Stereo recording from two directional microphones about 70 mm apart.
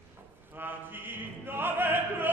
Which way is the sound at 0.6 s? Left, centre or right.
Right.